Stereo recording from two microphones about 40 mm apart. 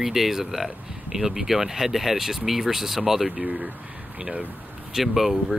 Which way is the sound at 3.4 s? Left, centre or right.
Right.